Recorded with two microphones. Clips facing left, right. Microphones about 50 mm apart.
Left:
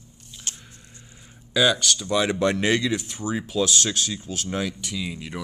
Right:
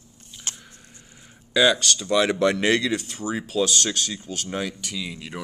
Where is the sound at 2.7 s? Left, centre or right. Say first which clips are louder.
Right 1 dB; right.